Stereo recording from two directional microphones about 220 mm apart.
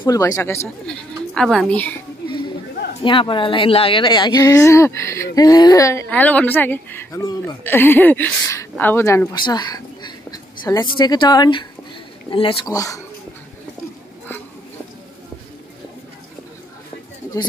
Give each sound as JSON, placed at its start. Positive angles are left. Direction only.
{"t": 0.0, "sound": "a woman's voice", "side_deg": 15}
{"t": 3.0, "sound": "a woman's voice", "side_deg": 25}